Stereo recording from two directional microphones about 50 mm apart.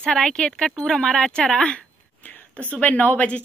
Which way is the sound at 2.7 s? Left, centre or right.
Left.